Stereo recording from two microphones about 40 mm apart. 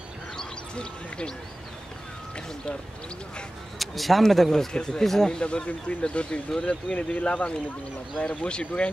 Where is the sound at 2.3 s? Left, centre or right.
Left.